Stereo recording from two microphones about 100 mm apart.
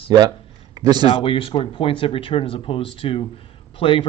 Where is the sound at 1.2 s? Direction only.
65° left (ahead or behind).